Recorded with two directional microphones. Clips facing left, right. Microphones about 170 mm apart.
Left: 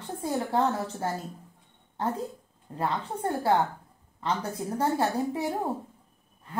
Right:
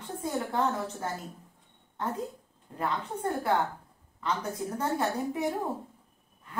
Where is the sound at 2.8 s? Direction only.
30° left (ahead or behind).